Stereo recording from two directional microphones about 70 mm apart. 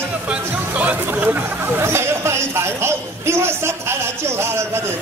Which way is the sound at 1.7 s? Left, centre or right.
Right.